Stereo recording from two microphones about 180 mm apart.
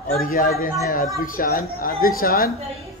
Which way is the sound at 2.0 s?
55° left (ahead or behind).